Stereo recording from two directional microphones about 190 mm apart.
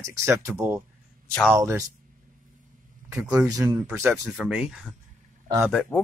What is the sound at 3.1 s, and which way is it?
Speech, 5° right (ahead or behind).